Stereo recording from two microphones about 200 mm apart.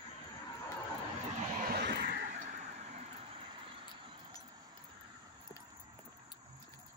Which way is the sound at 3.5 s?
25° right (ahead or behind).